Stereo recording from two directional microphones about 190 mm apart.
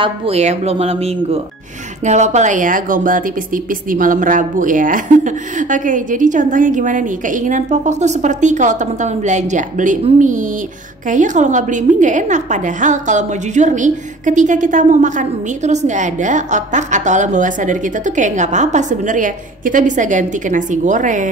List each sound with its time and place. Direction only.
0.0 s a woman's voice: 35° right (ahead or behind)